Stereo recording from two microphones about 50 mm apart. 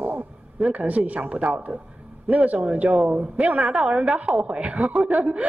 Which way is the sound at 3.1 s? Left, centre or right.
Right.